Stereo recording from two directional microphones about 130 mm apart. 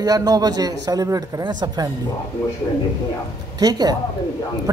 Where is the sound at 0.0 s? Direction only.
30° right (ahead or behind).